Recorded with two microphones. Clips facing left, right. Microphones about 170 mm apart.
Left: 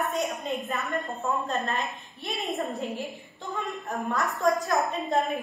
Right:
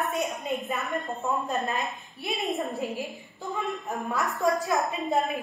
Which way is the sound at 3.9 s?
Centre (ahead or behind).